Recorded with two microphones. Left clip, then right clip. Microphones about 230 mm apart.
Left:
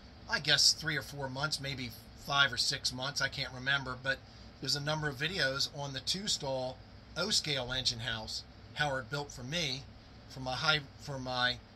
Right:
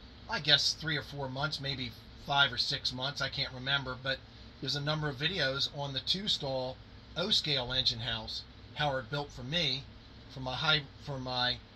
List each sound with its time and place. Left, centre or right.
0.3 s speech: centre